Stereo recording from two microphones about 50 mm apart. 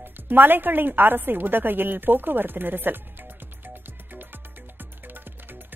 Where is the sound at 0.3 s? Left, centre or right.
Right.